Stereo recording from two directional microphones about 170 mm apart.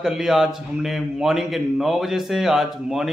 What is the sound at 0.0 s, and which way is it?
A man's voice, centre (ahead or behind).